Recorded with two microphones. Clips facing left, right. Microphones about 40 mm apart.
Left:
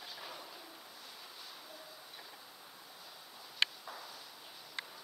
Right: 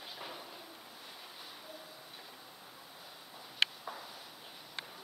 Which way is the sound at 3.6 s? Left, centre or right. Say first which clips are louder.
Right 2 dB; centre.